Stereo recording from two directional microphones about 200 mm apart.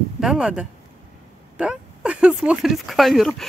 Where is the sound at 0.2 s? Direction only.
5° right (ahead or behind).